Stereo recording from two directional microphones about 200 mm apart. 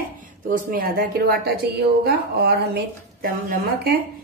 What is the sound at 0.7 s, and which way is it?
A woman's voice, 45° right (ahead or behind).